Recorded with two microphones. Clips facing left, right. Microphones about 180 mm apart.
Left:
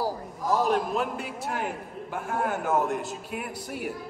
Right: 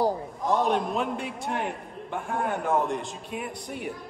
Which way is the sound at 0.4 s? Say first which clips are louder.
Left 1 dB; centre (ahead or behind).